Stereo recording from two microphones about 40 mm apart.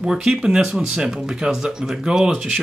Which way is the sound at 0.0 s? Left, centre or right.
Centre.